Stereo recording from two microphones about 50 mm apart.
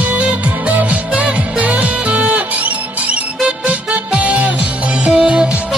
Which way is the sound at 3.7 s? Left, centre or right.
Right.